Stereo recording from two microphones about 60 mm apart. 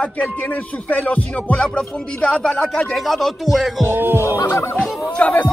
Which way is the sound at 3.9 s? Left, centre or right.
Right.